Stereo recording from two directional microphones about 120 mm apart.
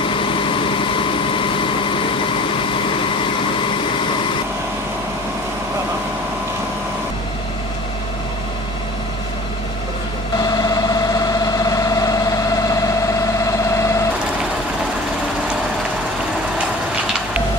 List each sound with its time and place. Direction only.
0.0 s vehicle: 45° left (ahead or behind)
10.4 s vehicle: 35° left (ahead or behind)
13.7 s vehicle: 25° left (ahead or behind)